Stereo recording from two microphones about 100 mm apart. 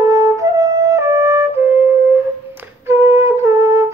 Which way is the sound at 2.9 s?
25° right (ahead or behind).